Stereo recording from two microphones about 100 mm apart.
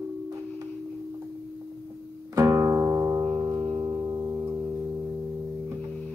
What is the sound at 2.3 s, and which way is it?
Music, 30° right (ahead or behind).